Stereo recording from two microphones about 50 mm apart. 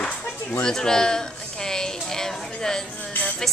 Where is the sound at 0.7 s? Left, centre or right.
Centre.